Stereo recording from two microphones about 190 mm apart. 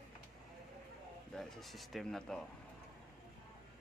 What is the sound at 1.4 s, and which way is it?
A man's voice, centre (ahead or behind).